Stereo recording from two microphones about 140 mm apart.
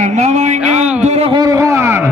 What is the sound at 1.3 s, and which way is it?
Speech, 25° right (ahead or behind).